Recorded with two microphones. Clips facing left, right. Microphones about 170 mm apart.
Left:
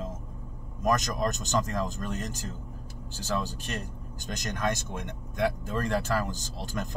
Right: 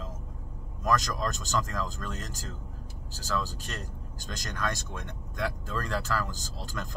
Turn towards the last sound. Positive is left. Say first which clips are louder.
# left 4 dB
turn(degrees=20)  # may be behind; listen again after turning